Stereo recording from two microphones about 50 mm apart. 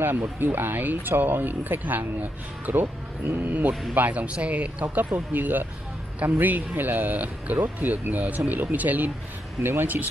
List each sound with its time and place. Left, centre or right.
0.0 s speech: right
5.1 s speech: right
9.6 s speech: right